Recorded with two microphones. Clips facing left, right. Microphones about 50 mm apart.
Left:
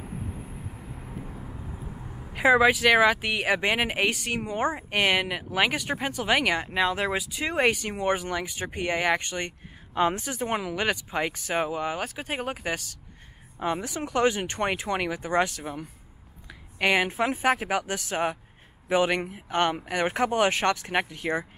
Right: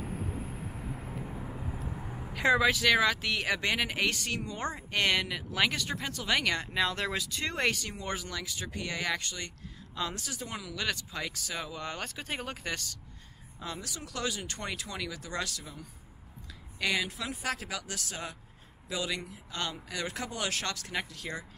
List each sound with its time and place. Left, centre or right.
0.0 s vehicle: centre
1.9 s a sound: centre
2.3 s speech: centre; by 10.7 s left
10.7 s speech: left
11.8 s speech: centre
13.6 s speech: left
16.7 s speech: left